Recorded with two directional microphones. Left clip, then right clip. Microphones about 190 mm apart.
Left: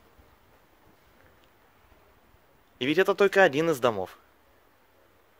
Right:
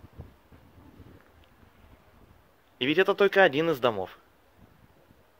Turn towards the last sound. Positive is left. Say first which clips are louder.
# left 1 dB
turn(degrees=20)  # may be behind; listen again after turning